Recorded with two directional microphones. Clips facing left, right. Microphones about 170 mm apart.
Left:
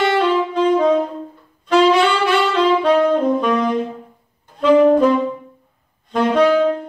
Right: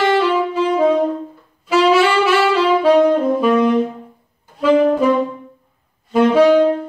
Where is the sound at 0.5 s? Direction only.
5° right (ahead or behind).